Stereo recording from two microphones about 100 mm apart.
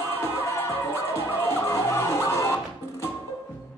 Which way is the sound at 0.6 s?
25° left (ahead or behind).